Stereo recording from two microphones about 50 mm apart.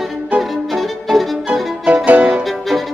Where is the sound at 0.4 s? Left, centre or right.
Centre.